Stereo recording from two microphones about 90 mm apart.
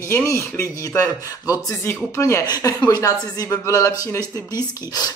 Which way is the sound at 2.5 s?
40° left (ahead or behind).